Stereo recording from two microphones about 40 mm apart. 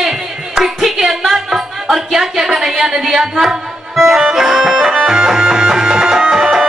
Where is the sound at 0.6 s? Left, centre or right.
Centre.